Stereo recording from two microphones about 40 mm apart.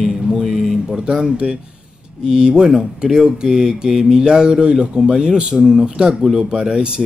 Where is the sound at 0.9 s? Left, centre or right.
Centre.